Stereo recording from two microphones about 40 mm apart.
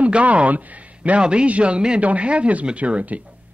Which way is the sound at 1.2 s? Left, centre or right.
Right.